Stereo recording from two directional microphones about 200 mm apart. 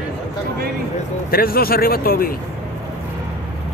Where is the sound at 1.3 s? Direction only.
50° left (ahead or behind).